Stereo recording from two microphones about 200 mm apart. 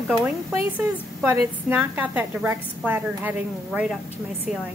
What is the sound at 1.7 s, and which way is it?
A woman's voice, 10° right (ahead or behind).